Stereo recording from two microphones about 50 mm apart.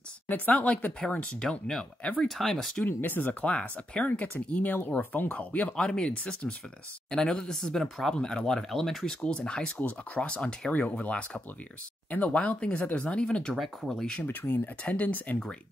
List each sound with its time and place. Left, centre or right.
0.3 s speech: left
1.0 s speech: centre
2.9 s speech: left
5.8 s speech: centre
9.8 s speech: left
10.2 s speech: centre
13.6 s speech: centre
14.2 s speech: left